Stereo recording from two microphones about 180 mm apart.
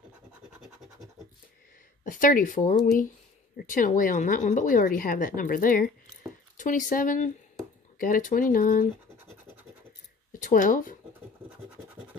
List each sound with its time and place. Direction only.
2.0 s a woman's voice: 50° left (ahead or behind)
9.4 s scratch: 10° right (ahead or behind)
10.3 s speech: 50° left (ahead or behind)
11.4 s scratch: 10° right (ahead or behind)